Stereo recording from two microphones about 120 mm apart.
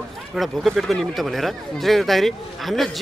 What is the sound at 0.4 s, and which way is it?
Speech, centre (ahead or behind).